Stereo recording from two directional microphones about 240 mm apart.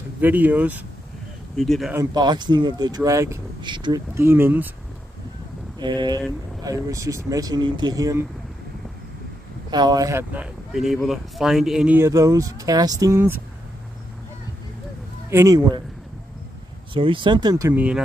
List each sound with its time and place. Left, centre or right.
0.2 s speech: centre
2.1 s speech: centre
5.8 s speech: centre
9.7 s speech: centre
15.2 s speech: centre
16.9 s speech: right